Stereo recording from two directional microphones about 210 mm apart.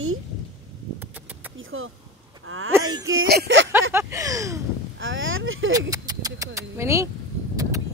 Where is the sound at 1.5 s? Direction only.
70° right (ahead or behind).